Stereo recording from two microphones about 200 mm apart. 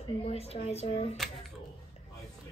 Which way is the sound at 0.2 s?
30° left (ahead or behind).